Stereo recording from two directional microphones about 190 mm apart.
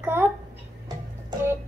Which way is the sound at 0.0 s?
10° right (ahead or behind).